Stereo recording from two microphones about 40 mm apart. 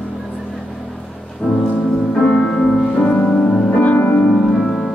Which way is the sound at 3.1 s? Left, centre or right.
Left.